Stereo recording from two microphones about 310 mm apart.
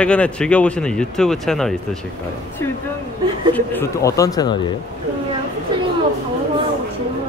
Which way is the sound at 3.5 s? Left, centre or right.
Centre.